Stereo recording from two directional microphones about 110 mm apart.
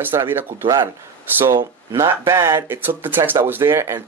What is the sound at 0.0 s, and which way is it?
Speech, 20° right (ahead or behind).